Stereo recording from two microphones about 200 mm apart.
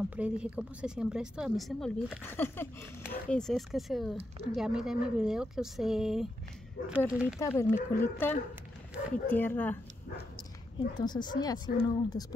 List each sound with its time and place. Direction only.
0.1 s speech: 5° right (ahead or behind)
7.3 s speech: 15° left (ahead or behind)
11.0 s speech: 20° left (ahead or behind)